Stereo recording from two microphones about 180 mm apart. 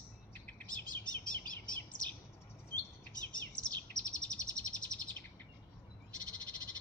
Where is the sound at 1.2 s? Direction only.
50° left (ahead or behind).